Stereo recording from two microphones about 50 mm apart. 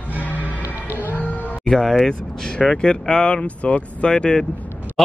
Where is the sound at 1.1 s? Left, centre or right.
Left.